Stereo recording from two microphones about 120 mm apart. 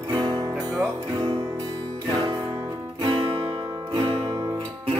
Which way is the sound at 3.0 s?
35° right (ahead or behind).